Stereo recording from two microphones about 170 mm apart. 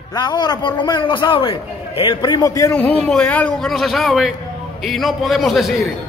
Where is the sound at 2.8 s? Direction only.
10° left (ahead or behind).